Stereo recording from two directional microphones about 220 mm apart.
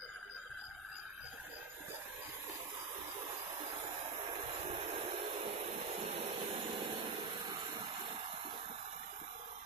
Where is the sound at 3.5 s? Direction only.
30° right (ahead or behind).